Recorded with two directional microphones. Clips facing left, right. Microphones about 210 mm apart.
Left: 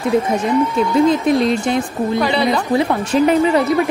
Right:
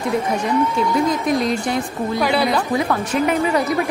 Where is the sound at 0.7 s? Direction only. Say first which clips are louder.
Left 5 dB; 30° left (ahead or behind).